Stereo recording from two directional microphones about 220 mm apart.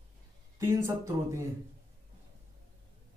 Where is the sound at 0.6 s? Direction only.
10° right (ahead or behind).